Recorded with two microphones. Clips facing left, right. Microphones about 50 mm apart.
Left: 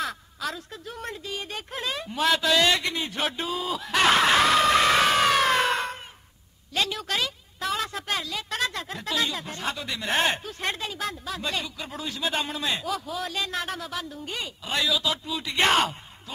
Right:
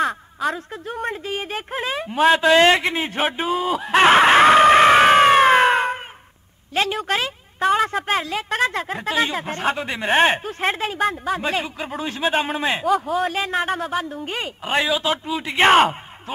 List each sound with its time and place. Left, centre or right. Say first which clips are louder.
0.0 s a sound: right 9 dB; right
1.1 s a woman's voice: right 7 dB; right
3.8 s screaming: right 7 dB; right
6.7 s a woman's voice: right 6 dB; right